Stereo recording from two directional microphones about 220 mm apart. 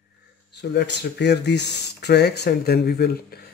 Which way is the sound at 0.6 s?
50° left (ahead or behind).